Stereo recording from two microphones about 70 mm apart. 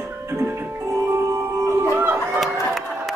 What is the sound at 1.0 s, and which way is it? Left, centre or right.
Music, right.